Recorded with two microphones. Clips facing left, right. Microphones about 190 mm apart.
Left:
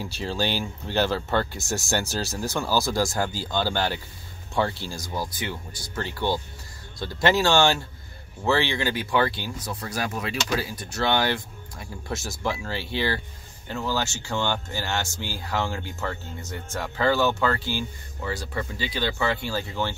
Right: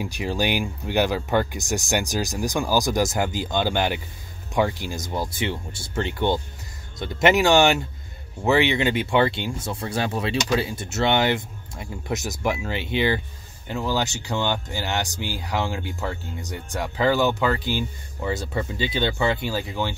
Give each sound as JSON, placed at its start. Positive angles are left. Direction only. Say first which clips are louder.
{"t": 0.0, "sound": "speech", "louder": "right 3 dB", "side_deg": -15}